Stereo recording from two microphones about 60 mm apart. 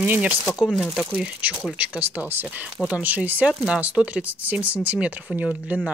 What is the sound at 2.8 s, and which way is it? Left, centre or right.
Speech, right.